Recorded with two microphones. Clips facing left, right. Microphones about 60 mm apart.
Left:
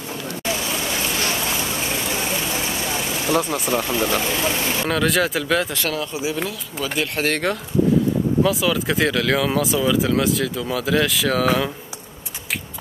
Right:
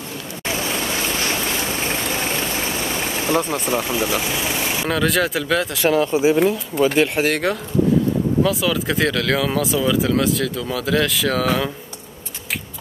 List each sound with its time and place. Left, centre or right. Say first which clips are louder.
3.3 s speech: even; right
3.7 s speech: left 1 dB; centre
4.8 s speech: right 1 dB; centre
5.9 s speech: right 9 dB; right
7.0 s speech: right 4 dB; centre